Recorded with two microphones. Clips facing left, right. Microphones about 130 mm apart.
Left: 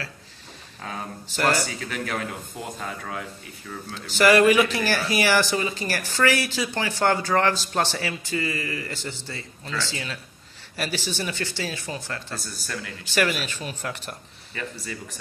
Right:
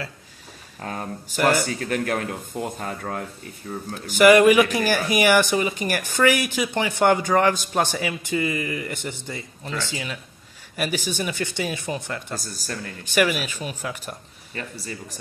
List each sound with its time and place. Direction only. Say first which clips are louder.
1.5 s speech: right 4 dB; 50° right (ahead or behind)
4.1 s speech: right 4 dB; 15° right (ahead or behind)
12.4 s speech: right 1 dB; 40° right (ahead or behind)
13.1 s speech: right 3 dB; 10° right (ahead or behind)
14.5 s speech: even; 35° right (ahead or behind)